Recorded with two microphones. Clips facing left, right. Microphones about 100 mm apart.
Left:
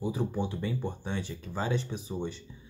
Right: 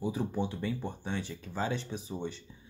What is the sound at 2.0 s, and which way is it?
Speech, 20° left (ahead or behind).